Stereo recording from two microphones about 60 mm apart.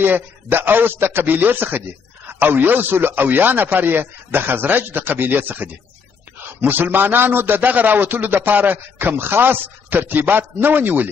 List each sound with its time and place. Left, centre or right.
0.0 s a man's voice: right